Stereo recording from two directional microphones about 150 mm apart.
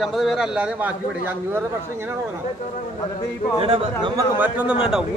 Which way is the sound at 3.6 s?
35° right (ahead or behind).